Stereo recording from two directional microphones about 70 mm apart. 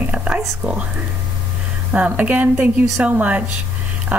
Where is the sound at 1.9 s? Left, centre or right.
Right.